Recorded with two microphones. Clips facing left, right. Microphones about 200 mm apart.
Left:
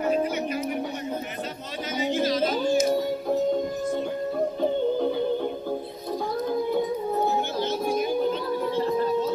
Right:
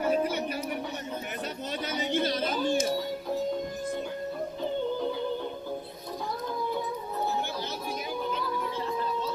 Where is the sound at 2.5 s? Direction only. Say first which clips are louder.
Left 5 dB; 50° left (ahead or behind).